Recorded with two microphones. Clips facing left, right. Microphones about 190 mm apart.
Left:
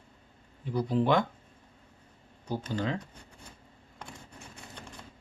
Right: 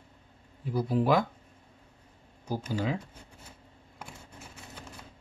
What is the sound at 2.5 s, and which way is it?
Speech, 10° right (ahead or behind).